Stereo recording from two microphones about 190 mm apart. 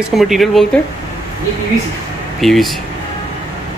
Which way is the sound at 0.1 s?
Centre (ahead or behind).